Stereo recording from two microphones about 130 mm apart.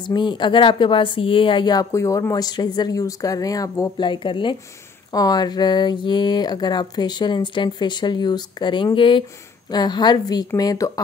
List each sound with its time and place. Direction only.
0.0 s speech: 35° left (ahead or behind)
4.0 s speech: 35° left (ahead or behind)